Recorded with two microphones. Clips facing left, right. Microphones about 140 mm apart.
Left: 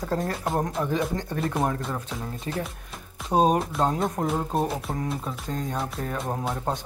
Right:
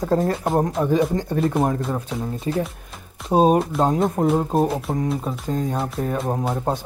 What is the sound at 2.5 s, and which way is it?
Speech, 20° right (ahead or behind).